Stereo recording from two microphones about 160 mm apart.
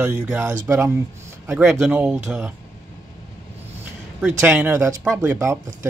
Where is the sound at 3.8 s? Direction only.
10° right (ahead or behind).